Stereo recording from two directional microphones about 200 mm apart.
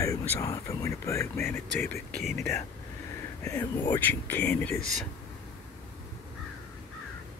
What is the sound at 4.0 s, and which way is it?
Speech, 10° left (ahead or behind).